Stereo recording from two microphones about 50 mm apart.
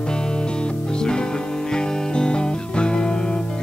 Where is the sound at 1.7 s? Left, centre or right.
Centre.